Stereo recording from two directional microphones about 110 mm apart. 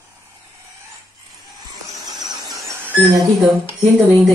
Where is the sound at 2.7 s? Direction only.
20° right (ahead or behind).